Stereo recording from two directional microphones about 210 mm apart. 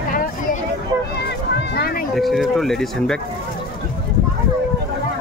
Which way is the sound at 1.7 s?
45° left (ahead or behind).